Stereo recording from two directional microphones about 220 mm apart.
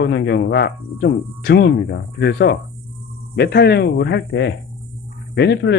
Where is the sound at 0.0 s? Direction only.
50° left (ahead or behind).